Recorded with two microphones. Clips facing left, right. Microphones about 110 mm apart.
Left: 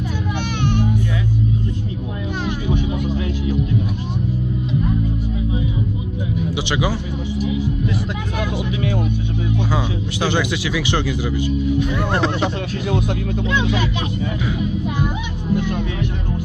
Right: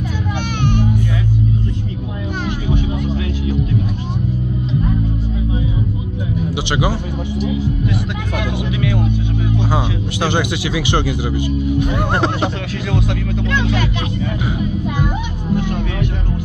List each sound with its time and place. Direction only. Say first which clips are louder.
6.5 s a man's voice: right 2 dB; 55° right (ahead or behind)
9.7 s speech: right 2 dB; 55° right (ahead or behind)
15.5 s music: right 1 dB; 50° right (ahead or behind)